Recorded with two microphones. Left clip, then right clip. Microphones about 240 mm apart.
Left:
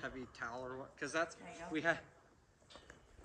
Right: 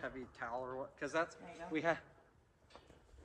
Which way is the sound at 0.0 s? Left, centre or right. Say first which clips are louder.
Even; right.